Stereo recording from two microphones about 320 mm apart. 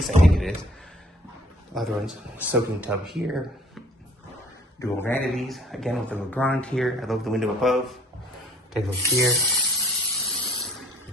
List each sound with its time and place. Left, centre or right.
0.3 s speech: centre
1.8 s speech: centre
4.7 s speech: centre
9.8 s spray: centre